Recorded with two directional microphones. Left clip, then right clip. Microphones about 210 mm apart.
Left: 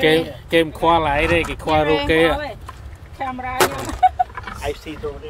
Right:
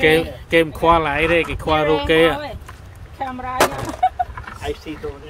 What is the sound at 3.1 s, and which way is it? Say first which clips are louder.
Speech: even; 30° left (ahead or behind).